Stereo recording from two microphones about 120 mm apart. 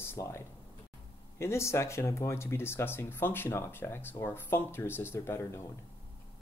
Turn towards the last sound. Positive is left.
turn(degrees=20)  # may be behind; listen again after turning